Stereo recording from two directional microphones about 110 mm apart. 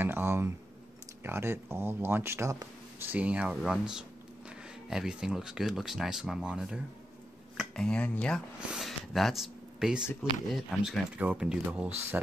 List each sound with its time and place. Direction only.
0.0 s a sound: 20° right (ahead or behind)
1.2 s speech: 20° right (ahead or behind); by 6.8 s 5° right (ahead or behind)
7.5 s speech: 5° left (ahead or behind)
8.5 s speech: centre (ahead or behind)